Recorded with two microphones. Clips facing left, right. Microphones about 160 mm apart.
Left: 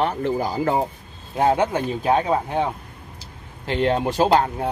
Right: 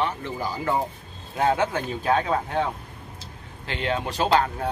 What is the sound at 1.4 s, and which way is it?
Speech, 30° left (ahead or behind).